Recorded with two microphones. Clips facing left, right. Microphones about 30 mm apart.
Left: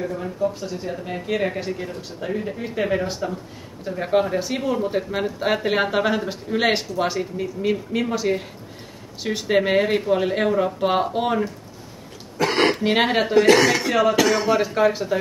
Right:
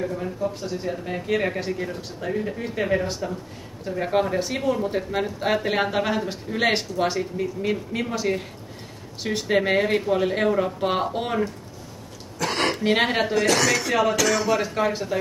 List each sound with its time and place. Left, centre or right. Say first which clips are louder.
0.0 s speech: left 2 dB; centre
12.4 s a sound: left 5 dB; centre
13.3 s speech: left 5 dB; left
14.6 s speech: left 4 dB; centre